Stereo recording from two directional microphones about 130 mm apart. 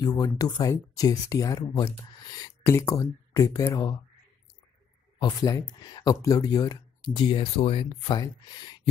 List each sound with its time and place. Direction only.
0.2 s speech: 30° left (ahead or behind)
5.2 s speech: 30° left (ahead or behind)